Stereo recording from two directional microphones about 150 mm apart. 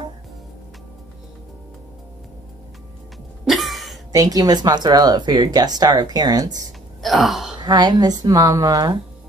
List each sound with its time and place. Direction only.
3.4 s cough: centre (ahead or behind)
4.1 s speech: 25° right (ahead or behind)
7.0 s gasp: centre (ahead or behind)
7.5 s speech: 25° right (ahead or behind)